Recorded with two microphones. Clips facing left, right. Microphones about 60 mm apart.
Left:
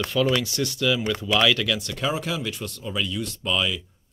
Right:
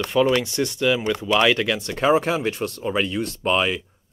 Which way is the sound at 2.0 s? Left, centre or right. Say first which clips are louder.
Right 8 dB; right.